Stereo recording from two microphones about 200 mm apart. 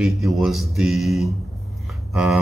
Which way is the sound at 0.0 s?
Centre (ahead or behind).